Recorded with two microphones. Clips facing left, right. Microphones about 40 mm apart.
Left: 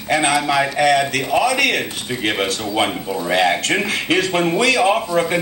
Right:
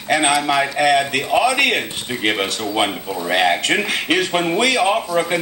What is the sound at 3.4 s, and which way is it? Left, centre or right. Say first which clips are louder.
A man's voice: right 1 dB; right.